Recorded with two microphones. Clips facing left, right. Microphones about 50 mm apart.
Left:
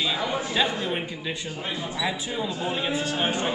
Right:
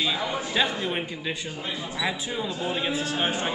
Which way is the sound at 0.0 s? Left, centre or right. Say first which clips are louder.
Left 1 dB; centre.